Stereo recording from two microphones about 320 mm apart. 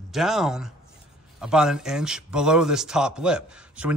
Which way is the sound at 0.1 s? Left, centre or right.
Centre.